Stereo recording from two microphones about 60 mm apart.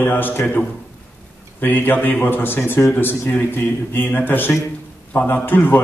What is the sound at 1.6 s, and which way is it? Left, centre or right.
A man's voice, left.